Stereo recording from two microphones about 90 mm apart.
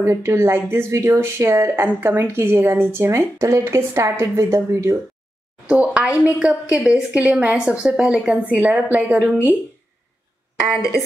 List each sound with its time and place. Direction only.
0.0 s speech: 35° right (ahead or behind)
5.7 s a woman's voice: 15° right (ahead or behind)